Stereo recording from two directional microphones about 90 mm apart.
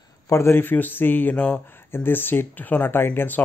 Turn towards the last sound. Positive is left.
turn(degrees=20)  # may be behind; listen again after turning